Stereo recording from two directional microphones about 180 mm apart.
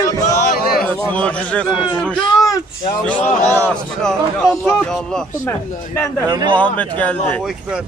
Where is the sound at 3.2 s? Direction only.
40° left (ahead or behind).